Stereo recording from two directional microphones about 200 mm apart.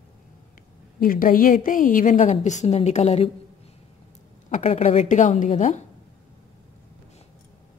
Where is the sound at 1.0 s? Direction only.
45° left (ahead or behind).